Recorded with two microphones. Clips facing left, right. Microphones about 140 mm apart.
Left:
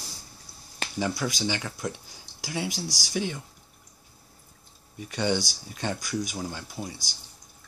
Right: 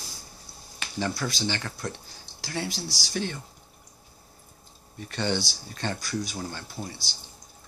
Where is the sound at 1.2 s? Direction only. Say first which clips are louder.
Left 1 dB; 15° left (ahead or behind).